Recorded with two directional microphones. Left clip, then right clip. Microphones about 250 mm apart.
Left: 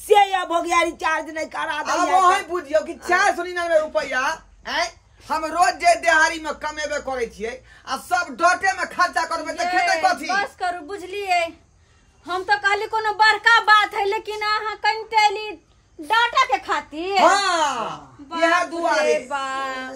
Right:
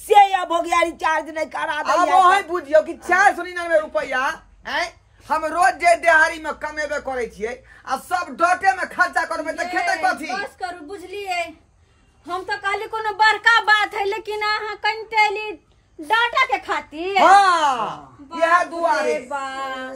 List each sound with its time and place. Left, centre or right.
0.1 s speech: centre
2.2 s speech: centre
3.1 s speech: centre
7.9 s speech: centre
10.4 s a woman's voice: centre
17.3 s speech: centre
18.5 s speech: centre